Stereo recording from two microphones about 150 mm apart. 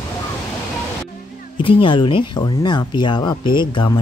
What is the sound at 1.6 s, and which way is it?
Speech, 35° left (ahead or behind).